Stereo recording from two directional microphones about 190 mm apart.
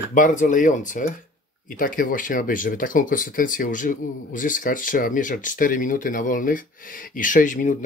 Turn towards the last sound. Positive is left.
turn(degrees=45)  # may be behind; listen again after turning